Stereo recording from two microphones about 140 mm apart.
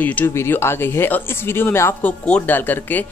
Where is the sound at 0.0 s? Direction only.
15° left (ahead or behind).